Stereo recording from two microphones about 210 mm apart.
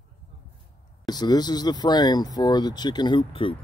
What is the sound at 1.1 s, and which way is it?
Speech, 20° left (ahead or behind).